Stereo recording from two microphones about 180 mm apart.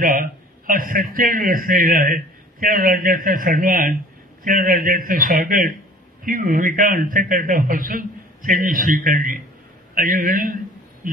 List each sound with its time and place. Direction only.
0.0 s a man's voice: 50° right (ahead or behind)